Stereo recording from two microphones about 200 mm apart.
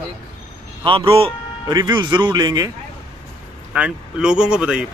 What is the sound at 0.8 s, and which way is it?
A man's voice, 25° right (ahead or behind).